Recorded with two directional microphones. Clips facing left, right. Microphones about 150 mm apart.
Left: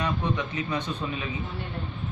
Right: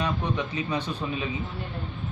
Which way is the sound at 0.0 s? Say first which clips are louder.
Even; 10° right (ahead or behind).